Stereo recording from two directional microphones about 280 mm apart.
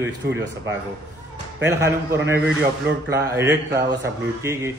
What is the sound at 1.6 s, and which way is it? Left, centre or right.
A man's voice, centre.